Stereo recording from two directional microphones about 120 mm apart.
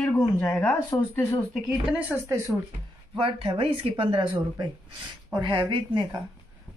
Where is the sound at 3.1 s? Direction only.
45° right (ahead or behind).